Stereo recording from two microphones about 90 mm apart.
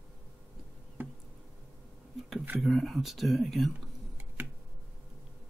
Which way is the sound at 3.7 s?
20° right (ahead or behind).